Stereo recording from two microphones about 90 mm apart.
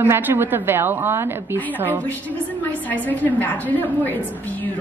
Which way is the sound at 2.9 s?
20° left (ahead or behind).